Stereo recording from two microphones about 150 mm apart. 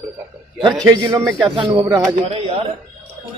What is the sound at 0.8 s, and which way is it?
A man's voice, 25° right (ahead or behind).